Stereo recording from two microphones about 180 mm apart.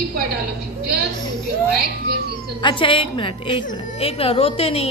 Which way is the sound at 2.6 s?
30° left (ahead or behind).